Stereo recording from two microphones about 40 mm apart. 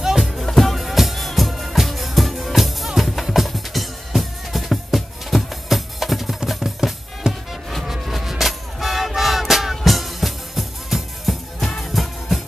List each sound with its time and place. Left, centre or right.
0.0 s music: centre
0.5 s music: centre
7.2 s music: centre
7.8 s music: centre